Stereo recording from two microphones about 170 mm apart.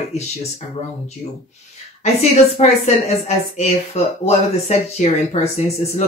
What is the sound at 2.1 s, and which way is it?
Speech, 40° left (ahead or behind).